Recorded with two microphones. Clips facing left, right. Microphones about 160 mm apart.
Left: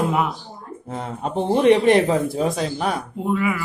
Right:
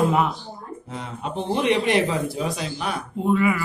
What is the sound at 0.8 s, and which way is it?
Speech, 50° left (ahead or behind).